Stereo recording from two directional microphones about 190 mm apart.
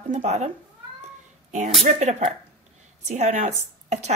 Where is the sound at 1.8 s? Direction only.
40° right (ahead or behind).